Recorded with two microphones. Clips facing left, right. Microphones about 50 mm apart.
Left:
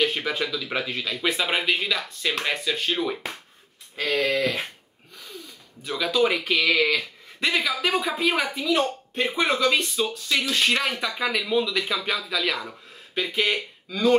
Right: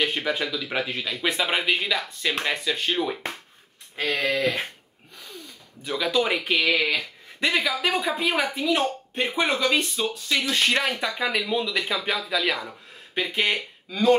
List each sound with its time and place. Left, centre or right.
0.0 s speech: centre
4.1 s speech: centre
5.9 s speech: centre
7.3 s speech: centre